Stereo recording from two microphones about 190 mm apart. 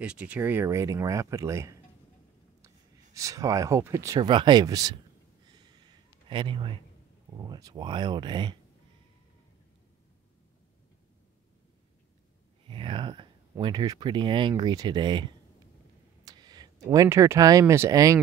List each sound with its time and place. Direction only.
0.0 s speech: 5° right (ahead or behind)
3.2 s speech: 15° right (ahead or behind)
5.5 s a sound: 25° right (ahead or behind)
6.2 s a man's voice: 25° right (ahead or behind)
12.6 s speech: 25° right (ahead or behind)
16.3 s speech: 20° right (ahead or behind)